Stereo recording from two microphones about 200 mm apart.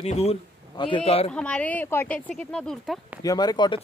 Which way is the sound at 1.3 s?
5° left (ahead or behind).